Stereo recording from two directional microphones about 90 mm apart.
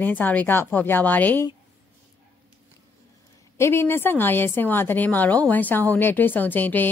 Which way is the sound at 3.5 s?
30° left (ahead or behind).